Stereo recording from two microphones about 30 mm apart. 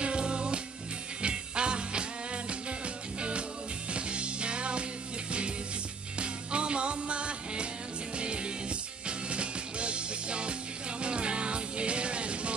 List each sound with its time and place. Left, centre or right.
0.0 s music: right
3.2 s music: right
6.1 s music: right
9.0 s music: right